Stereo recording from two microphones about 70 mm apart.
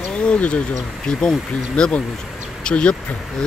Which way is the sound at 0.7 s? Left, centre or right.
Centre.